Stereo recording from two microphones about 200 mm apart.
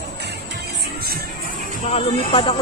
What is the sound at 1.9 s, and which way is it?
Speech, 30° left (ahead or behind).